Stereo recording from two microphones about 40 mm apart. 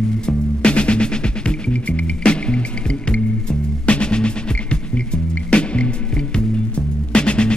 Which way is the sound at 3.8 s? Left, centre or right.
Left.